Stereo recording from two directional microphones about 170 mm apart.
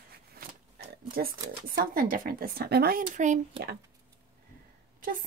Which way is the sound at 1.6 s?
60° right (ahead or behind).